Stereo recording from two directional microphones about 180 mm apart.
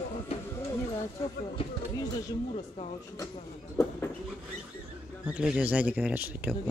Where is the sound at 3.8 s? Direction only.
15° left (ahead or behind).